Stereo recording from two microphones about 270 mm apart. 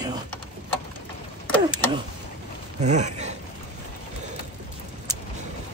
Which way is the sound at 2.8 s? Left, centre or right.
Right.